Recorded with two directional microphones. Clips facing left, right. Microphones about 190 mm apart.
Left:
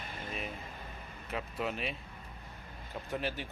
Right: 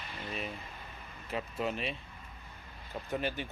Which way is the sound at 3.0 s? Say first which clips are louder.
Right 2 dB; centre (ahead or behind).